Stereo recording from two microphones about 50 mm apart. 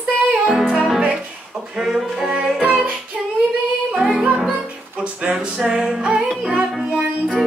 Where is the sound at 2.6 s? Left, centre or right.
Right.